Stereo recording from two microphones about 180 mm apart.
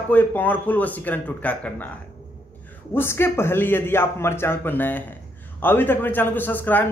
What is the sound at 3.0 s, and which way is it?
A man's voice, 15° left (ahead or behind).